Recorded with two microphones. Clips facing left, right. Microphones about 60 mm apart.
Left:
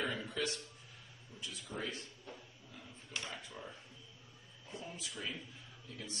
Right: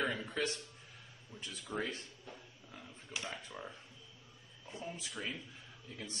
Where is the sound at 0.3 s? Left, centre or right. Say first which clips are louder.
Right 2 dB; right.